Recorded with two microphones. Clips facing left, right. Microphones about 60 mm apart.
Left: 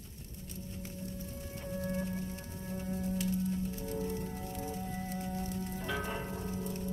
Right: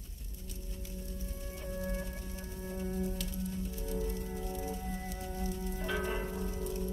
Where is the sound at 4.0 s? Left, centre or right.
Centre.